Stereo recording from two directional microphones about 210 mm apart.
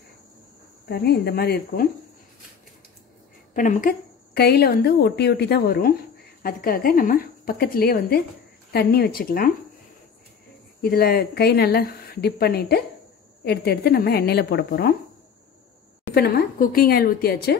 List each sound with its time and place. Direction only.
0.8 s a woman's voice: 50° left (ahead or behind)
3.5 s a woman's voice: 35° left (ahead or behind)
10.8 s a woman's voice: 45° left (ahead or behind)
16.2 s a woman's voice: 45° left (ahead or behind)